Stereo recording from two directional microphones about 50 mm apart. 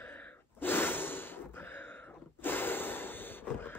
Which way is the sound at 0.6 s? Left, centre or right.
Left.